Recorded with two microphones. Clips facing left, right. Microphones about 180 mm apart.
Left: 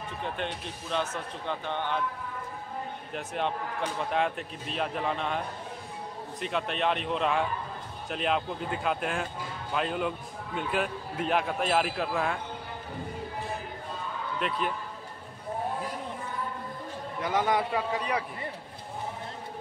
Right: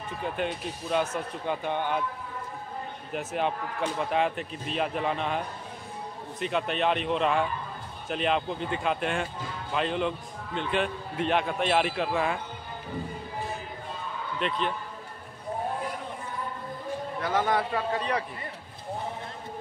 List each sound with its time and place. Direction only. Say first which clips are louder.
0.2 s speech: right 4 dB; 5° right (ahead or behind)
3.1 s a man's voice: right 3 dB; 5° right (ahead or behind)
6.4 s a man's voice: right 2 dB; centre (ahead or behind)
14.4 s a man's voice: right 2 dB; 5° left (ahead or behind)
17.2 s speech: even; 15° left (ahead or behind)